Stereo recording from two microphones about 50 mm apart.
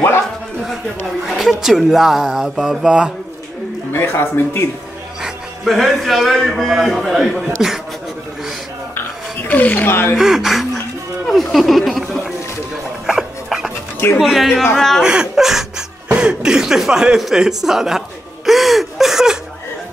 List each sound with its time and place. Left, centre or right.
1.2 s a man's voice: centre
3.9 s speech: left
5.2 s a man's voice: centre
9.5 s speech: left
9.8 s speech: left
10.1 s speech: centre
12.0 s music: centre
13.0 s dog: centre
14.1 s a man's voice: centre
15.0 s speech: centre
16.1 s speech: centre